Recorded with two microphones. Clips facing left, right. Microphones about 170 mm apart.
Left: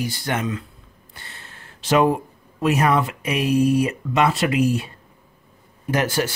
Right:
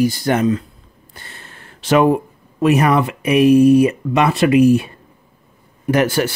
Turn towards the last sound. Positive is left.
turn(degrees=-65)  # may be behind; listen again after turning